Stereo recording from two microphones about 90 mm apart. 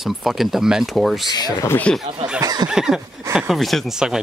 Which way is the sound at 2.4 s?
50° right (ahead or behind).